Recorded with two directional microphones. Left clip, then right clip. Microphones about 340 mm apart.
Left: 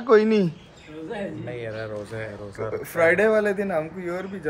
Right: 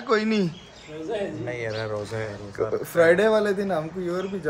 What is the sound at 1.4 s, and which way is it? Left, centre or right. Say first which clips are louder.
Speech: right 3 dB; right.